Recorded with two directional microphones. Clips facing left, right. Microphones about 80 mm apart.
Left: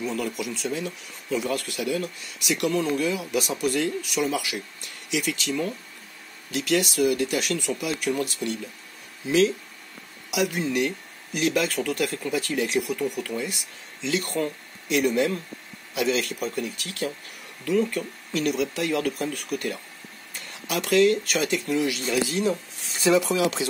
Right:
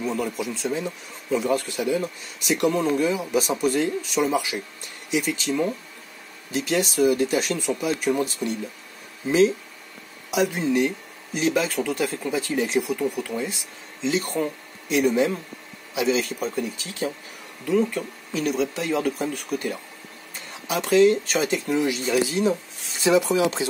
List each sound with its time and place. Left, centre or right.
0.1 s speech: right
2.7 s speech: right
7.5 s speech: right
7.8 s speech: right
14.9 s speech: centre
16.6 s speech: centre
20.6 s speech: right